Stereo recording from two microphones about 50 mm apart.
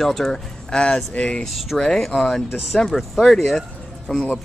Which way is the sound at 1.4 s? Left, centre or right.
Centre.